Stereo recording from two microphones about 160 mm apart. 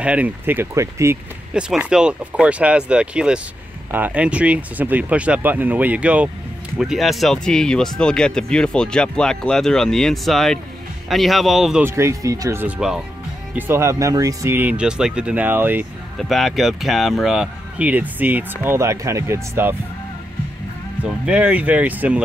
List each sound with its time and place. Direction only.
0.0 s speech: 10° right (ahead or behind)
1.5 s speech: 5° right (ahead or behind)
11.8 s speech: 15° right (ahead or behind)
16.2 s speech: centre (ahead or behind); by 19.7 s 15° right (ahead or behind)
21.0 s speech: 10° right (ahead or behind)